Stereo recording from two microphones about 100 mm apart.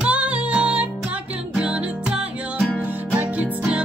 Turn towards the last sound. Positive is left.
turn(degrees=-10)  # may be behind; listen again after turning